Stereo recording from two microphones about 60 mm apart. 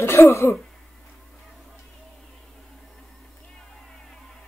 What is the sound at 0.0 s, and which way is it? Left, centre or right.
Cough, left.